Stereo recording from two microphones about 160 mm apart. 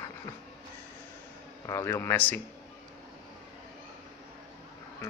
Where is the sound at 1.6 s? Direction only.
15° left (ahead or behind).